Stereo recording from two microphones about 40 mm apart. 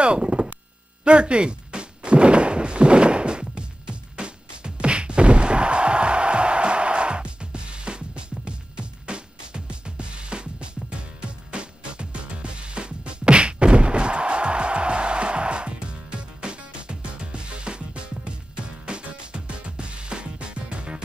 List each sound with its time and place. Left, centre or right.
0.0 s a sound: right
1.0 s thunk: right
18.9 s music: right